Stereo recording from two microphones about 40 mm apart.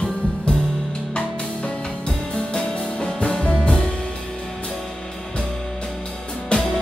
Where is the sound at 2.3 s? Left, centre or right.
Left.